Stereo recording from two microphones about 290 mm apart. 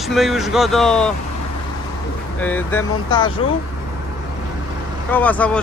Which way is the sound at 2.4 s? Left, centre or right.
Centre.